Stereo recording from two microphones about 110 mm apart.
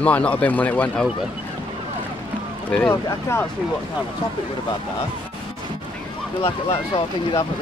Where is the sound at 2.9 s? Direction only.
20° left (ahead or behind).